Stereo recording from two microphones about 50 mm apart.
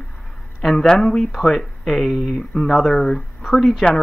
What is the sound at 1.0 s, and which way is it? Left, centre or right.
Speech, centre.